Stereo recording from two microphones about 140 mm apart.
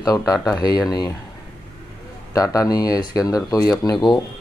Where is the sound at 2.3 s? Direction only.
25° left (ahead or behind).